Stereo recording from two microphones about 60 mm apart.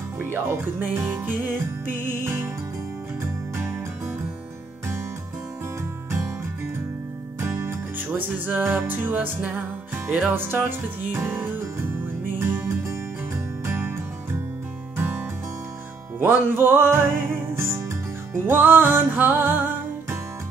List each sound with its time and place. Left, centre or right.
0.2 s music: right
7.3 s music: right
10.0 s music: centre
10.3 s music: right
13.7 s music: right
15.0 s music: right
18.4 s music: right